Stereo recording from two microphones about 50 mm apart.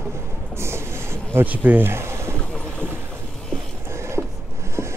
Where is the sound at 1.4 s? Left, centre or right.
Right.